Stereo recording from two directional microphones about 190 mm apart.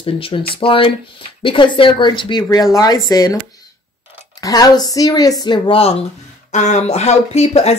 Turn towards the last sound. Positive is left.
turn(degrees=35)  # may be behind; listen again after turning